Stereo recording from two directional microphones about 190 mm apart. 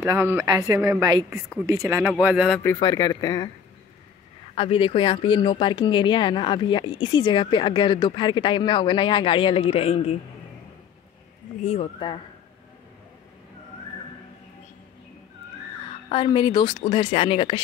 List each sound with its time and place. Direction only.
0.0 s a woman's voice: 15° right (ahead or behind)
2.6 s speech: 20° left (ahead or behind)
4.6 s speech: 30° left (ahead or behind)
11.6 s speech: 35° left (ahead or behind)
16.1 s speech: 30° left (ahead or behind)